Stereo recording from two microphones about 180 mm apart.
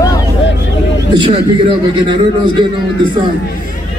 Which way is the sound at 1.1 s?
30° right (ahead or behind).